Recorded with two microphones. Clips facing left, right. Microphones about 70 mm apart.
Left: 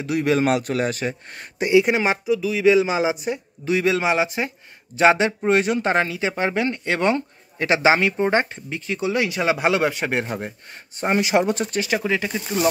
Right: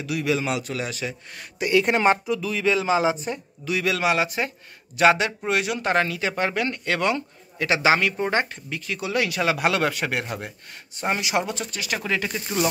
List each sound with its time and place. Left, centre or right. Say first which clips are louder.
0.0 s a man's voice: left 5 dB; left
1.7 s speech: left 2 dB; centre
3.6 s a man's voice: left 3 dB; left
12.0 s speech: left 3 dB; centre